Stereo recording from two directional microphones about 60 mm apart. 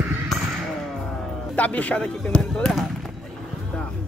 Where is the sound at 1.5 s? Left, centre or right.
Left.